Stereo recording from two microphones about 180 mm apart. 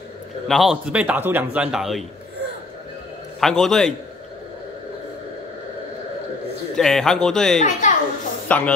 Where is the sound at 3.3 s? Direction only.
Centre (ahead or behind).